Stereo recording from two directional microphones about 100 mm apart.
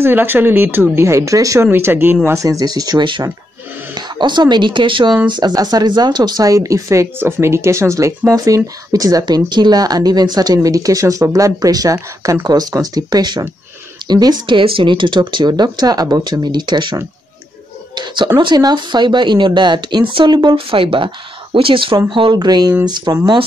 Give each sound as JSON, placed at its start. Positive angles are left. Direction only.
{"t": 0.0, "sound": "speech", "side_deg": -20}
{"t": 1.7, "sound": "speech", "side_deg": -20}
{"t": 2.2, "sound": "speech", "side_deg": -35}
{"t": 20.5, "sound": "speech", "side_deg": -60}